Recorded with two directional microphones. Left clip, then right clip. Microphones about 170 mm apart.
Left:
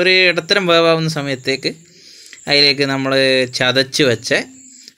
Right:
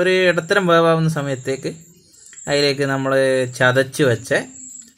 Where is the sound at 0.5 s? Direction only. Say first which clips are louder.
Left 2 dB; 5° left (ahead or behind).